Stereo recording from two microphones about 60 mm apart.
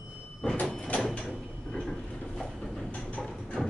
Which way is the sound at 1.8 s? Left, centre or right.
Centre.